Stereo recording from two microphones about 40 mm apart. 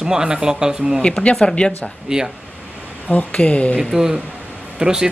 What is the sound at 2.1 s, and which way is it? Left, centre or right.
Speech, centre.